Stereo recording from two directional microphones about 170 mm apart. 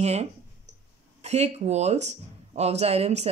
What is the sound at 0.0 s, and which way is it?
Speech, 40° right (ahead or behind).